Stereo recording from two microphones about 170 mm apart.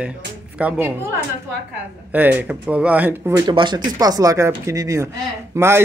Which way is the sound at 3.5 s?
25° right (ahead or behind).